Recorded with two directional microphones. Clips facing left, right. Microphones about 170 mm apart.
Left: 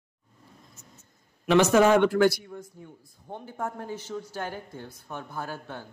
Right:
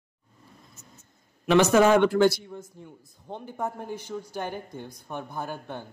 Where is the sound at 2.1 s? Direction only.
25° right (ahead or behind).